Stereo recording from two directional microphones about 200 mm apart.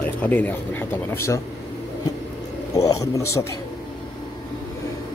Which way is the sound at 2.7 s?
15° left (ahead or behind).